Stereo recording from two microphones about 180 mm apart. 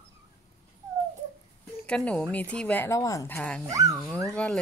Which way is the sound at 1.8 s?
5° left (ahead or behind).